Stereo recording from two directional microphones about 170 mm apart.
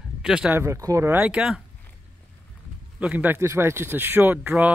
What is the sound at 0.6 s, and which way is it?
Speech, 15° right (ahead or behind).